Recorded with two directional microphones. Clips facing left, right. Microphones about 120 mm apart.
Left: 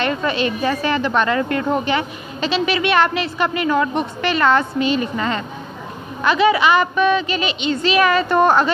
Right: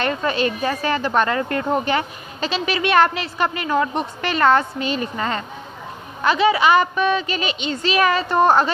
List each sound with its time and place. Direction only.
0.0 s speech: 35° right (ahead or behind)